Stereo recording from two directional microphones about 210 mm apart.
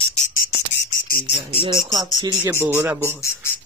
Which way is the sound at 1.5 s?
25° right (ahead or behind).